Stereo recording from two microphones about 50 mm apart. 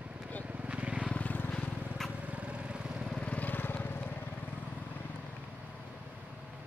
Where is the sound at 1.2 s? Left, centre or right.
Left.